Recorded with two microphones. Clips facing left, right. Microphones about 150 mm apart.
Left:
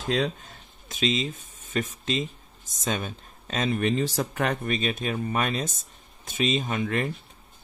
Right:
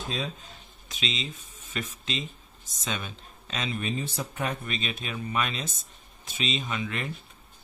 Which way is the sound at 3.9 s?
85° left.